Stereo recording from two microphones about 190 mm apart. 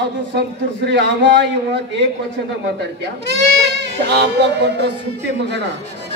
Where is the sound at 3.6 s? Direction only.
60° right (ahead or behind).